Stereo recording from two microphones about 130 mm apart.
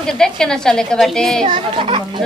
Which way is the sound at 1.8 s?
40° right (ahead or behind).